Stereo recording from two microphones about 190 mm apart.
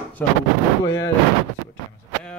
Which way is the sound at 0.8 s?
15° left (ahead or behind).